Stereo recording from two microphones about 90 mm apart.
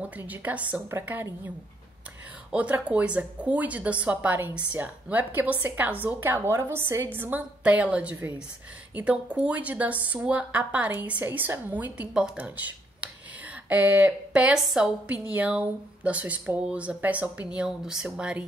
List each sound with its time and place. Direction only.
0.2 s a woman's voice: 20° right (ahead or behind)
2.5 s a woman's voice: 15° right (ahead or behind)